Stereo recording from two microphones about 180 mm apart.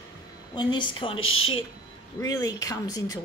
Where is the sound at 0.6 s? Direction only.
25° left (ahead or behind).